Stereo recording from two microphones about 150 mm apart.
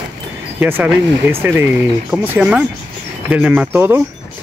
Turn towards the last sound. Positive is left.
turn(degrees=-15)  # may be behind; listen again after turning